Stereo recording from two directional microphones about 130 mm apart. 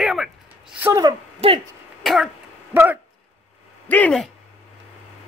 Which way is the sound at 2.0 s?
Centre (ahead or behind).